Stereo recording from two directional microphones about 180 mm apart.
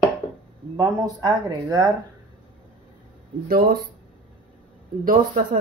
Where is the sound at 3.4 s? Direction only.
55° right (ahead or behind).